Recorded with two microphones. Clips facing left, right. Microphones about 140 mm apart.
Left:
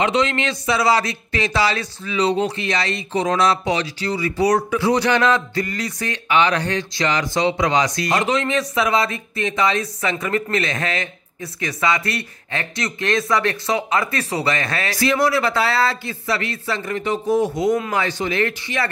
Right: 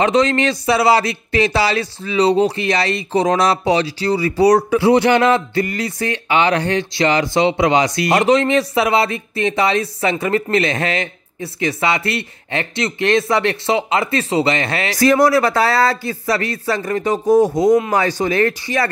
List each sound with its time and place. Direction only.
0.0 s speech: 45° right (ahead or behind); by 15.0 s 25° right (ahead or behind)
15.0 s speech: 45° right (ahead or behind)